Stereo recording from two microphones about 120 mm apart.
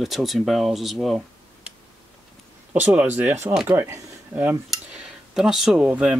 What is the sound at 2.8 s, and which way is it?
Speech, 10° right (ahead or behind).